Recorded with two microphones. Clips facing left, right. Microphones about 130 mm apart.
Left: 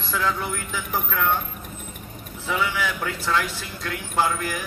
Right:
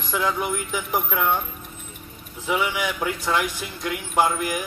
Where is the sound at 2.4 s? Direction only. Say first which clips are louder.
Right 1 dB; 15° right (ahead or behind).